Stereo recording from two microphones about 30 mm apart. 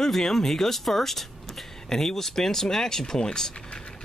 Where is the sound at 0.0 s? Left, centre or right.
Centre.